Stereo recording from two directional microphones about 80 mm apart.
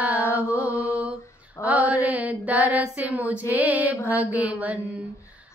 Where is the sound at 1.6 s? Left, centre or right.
Centre.